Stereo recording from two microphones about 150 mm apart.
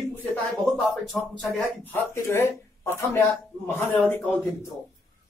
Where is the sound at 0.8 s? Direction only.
Centre (ahead or behind).